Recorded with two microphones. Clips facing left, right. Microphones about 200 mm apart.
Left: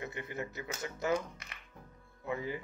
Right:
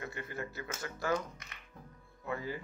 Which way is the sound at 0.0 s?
20° left (ahead or behind).